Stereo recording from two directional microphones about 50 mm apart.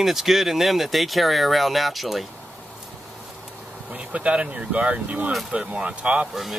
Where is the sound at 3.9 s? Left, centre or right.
Right.